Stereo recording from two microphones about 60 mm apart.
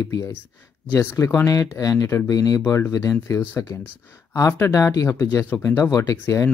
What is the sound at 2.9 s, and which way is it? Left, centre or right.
Speech, left.